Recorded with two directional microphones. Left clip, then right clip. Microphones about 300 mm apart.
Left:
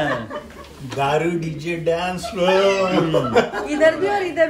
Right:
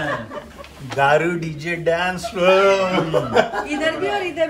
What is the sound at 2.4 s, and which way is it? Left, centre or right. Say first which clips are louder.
Speech: right 2 dB; centre.